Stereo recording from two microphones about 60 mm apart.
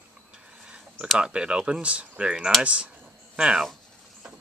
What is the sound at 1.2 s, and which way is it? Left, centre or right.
Speech, centre.